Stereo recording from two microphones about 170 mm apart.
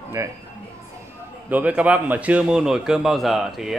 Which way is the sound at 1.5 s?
10° right (ahead or behind).